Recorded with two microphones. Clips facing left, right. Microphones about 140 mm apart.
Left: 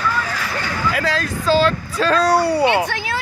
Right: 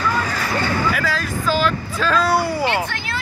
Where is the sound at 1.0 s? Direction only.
25° left (ahead or behind).